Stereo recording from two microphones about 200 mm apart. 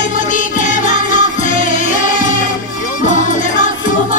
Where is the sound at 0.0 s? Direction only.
40° left (ahead or behind).